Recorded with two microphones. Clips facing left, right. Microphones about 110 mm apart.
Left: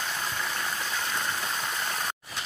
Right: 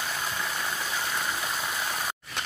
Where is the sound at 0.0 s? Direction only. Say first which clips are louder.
Even; 5° right (ahead or behind).